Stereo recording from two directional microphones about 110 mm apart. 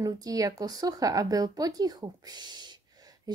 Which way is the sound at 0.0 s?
35° right (ahead or behind).